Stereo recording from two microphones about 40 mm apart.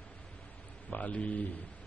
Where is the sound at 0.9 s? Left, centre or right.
Left.